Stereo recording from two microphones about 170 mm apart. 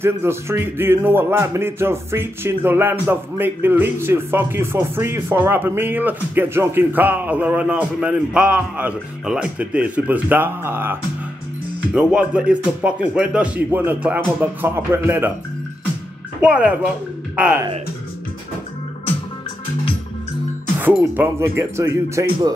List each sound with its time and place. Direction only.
0.0 s speech: 15° right (ahead or behind)
16.4 s speech: 5° right (ahead or behind)
20.8 s speech: 10° right (ahead or behind)